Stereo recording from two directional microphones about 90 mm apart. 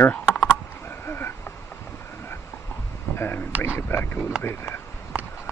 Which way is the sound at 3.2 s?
25° left (ahead or behind).